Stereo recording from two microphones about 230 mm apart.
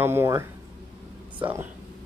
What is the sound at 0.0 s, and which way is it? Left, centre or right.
Speech, centre.